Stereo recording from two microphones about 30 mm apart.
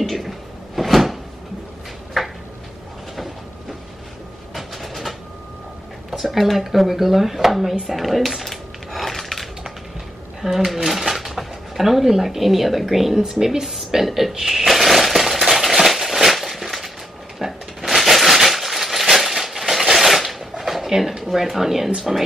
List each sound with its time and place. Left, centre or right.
0.0 s cupboard open or close: centre
2.2 s a sound: centre
4.6 s train: centre
6.2 s speech: centre
7.9 s a sound: centre
10.4 s speech: centre
13.2 s speech: centre
14.0 s speech: centre
14.5 s a sound: centre
17.4 s shuffling cards: centre
19.1 s a sound: centre
21.2 s speech: centre